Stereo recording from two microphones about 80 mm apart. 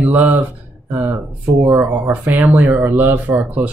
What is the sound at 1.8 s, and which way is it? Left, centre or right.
Speech, right.